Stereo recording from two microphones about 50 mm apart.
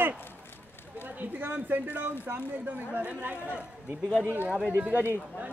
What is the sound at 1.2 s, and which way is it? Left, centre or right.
Speech, right.